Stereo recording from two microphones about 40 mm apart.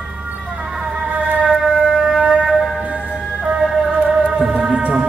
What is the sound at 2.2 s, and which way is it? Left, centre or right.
Music, centre.